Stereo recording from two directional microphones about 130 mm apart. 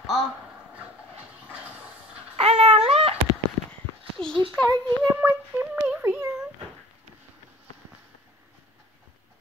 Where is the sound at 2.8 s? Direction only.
50° right (ahead or behind).